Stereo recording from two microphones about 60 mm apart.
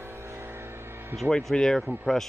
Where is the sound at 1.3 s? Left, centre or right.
Centre.